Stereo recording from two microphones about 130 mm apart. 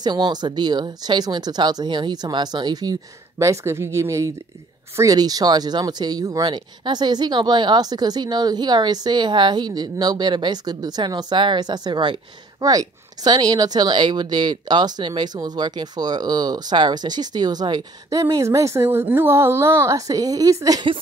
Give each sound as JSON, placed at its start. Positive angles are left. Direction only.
{"t": 0.0, "sound": "speech", "side_deg": -35}